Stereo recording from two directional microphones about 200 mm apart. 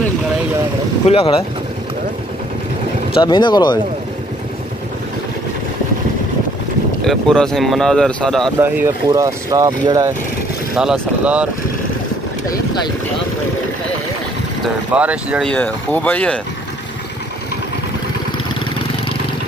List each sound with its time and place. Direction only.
1.0 s speech: 30° left (ahead or behind)
3.2 s speech: 25° left (ahead or behind)
7.1 s speech: centre (ahead or behind)
8.5 s speech: 15° right (ahead or behind)
10.8 s speech: 5° right (ahead or behind)
14.6 s speech: 5° right (ahead or behind)
15.4 s speech: 10° left (ahead or behind)